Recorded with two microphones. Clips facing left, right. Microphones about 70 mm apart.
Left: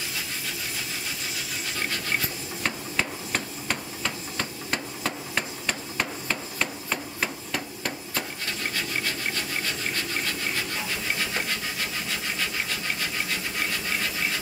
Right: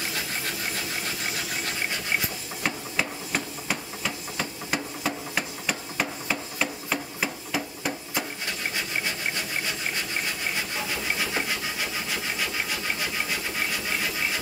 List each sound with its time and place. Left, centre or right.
2.6 s hammer: centre
8.7 s wood: centre
11.1 s wood: centre